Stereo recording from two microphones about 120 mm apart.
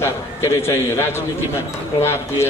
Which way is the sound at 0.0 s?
20° left (ahead or behind).